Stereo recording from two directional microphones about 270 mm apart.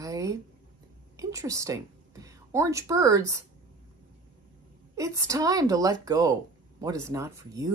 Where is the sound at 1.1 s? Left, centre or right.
Centre.